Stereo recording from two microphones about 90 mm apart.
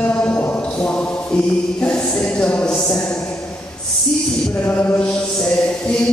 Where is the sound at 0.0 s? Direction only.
15° left (ahead or behind).